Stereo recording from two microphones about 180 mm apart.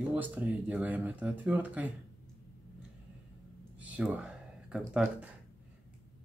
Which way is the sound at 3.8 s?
5° right (ahead or behind).